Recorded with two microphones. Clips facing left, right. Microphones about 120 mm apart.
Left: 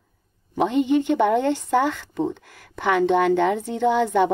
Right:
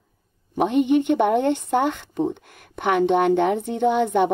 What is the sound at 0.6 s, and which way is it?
Speech, 15° right (ahead or behind).